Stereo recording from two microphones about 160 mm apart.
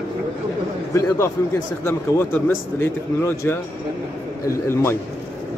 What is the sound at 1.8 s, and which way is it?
Speech, 15° left (ahead or behind).